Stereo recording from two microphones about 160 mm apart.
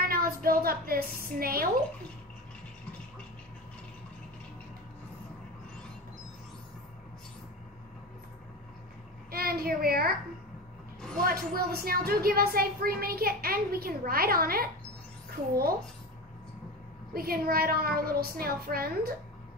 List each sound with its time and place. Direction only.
0.0 s speech: 65° right (ahead or behind)
9.3 s a woman's voice: 70° right (ahead or behind)
11.0 s a sound: 5° left (ahead or behind)
11.2 s speech: 70° right (ahead or behind)
17.1 s speech: 70° right (ahead or behind)